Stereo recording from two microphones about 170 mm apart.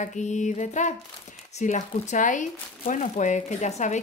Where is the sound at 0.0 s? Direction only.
45° left (ahead or behind).